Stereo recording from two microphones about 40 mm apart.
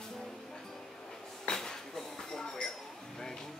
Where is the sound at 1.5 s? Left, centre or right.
Centre.